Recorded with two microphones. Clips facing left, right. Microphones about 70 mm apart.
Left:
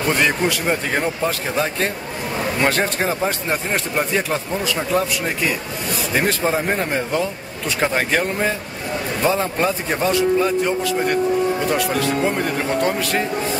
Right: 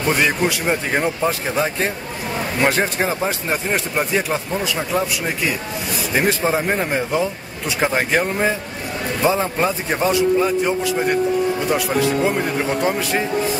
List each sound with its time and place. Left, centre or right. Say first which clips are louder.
0.2 s a man's voice: even; centre